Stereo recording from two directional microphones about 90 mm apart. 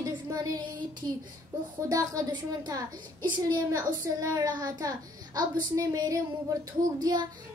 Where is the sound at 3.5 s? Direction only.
45° right (ahead or behind).